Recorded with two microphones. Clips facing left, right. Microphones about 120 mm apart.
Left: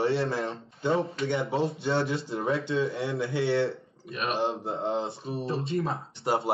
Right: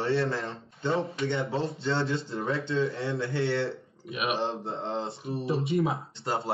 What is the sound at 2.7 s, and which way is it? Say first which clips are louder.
Speech: even; centre (ahead or behind).